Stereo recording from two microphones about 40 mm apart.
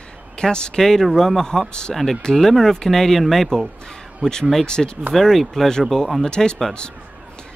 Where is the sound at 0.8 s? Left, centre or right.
Centre.